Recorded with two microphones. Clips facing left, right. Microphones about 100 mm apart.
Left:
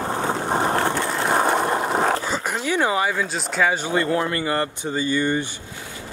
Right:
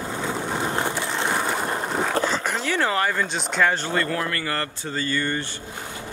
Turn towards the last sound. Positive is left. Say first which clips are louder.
# left 4 dB
turn(degrees=15)  # may be behind; listen again after turning